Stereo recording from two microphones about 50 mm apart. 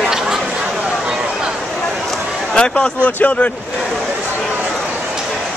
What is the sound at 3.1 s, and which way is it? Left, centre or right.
Speech, left.